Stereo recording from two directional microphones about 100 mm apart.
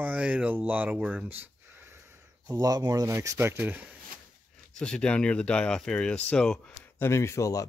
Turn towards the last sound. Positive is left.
turn(degrees=30)  # may be behind; listen again after turning